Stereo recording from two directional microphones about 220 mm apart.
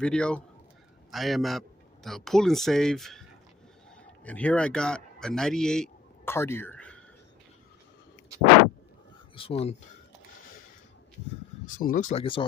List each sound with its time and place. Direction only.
0.0 s a man's voice: 5° left (ahead or behind)
9.3 s speech: 25° left (ahead or behind)
11.6 s speech: 40° left (ahead or behind)